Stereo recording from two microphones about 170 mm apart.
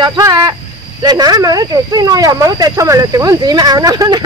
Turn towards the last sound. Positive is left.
turn(degrees=-25)  # may be behind; listen again after turning